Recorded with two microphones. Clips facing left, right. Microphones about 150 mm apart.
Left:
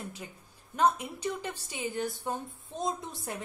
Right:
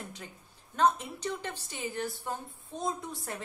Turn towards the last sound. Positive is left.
turn(degrees=20)  # may be behind; listen again after turning